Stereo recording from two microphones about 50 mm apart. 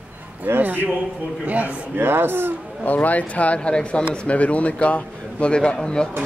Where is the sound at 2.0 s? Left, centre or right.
Right.